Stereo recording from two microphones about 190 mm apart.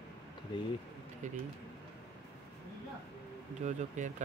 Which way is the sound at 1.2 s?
40° right (ahead or behind).